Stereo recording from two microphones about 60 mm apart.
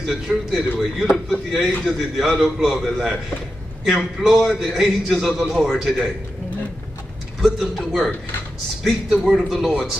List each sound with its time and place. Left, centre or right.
0.0 s a man's voice: centre
7.4 s a man's voice: centre
9.1 s a man's voice: centre